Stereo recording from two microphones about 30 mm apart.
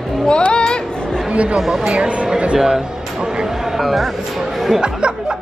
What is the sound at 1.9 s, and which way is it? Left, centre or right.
Speech, right.